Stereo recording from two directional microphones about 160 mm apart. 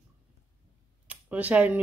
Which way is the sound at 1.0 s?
10° right (ahead or behind).